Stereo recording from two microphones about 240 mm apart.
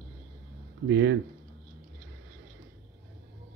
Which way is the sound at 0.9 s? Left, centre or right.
Right.